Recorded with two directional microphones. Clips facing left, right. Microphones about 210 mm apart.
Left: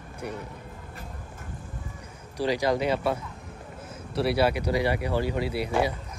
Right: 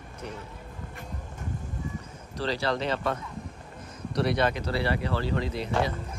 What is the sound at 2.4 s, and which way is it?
Speech, 10° left (ahead or behind).